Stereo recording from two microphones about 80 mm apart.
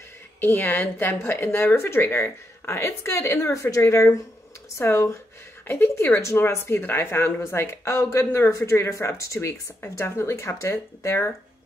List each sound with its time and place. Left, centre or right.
0.4 s speech: left